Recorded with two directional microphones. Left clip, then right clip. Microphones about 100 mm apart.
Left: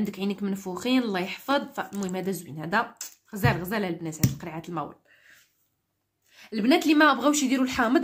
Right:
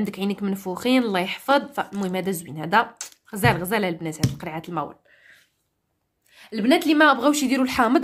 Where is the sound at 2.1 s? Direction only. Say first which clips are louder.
Right 5 dB; 60° right (ahead or behind); by 4.8 s 40° right (ahead or behind).